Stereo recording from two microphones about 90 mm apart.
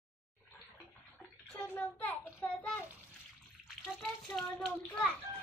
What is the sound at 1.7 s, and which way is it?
A child's voice, 20° left (ahead or behind).